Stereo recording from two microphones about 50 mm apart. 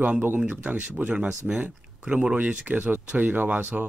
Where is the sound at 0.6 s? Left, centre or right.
Right.